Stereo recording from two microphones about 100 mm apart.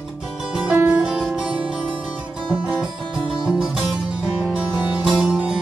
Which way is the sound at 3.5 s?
5° right (ahead or behind).